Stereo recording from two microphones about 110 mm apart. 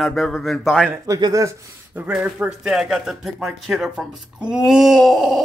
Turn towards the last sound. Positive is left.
turn(degrees=0)  # may be behind; listen again after turning